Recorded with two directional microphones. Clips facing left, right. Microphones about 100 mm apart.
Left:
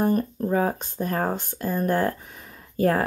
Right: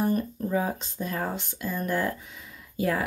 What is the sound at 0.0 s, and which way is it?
Speech, 50° left (ahead or behind).